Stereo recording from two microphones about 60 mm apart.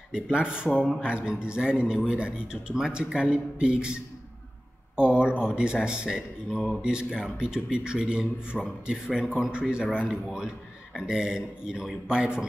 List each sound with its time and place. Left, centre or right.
0.1 s speech: centre